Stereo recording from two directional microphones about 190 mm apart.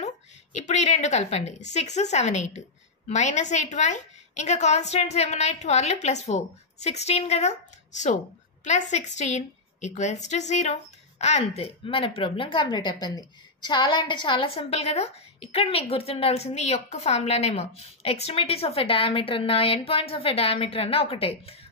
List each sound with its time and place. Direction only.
0.0 s a woman's voice: 40° left (ahead or behind)
8.6 s a woman's voice: 40° left (ahead or behind)